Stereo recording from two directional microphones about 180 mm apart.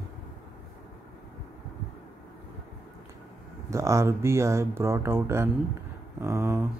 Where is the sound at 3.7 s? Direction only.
15° right (ahead or behind).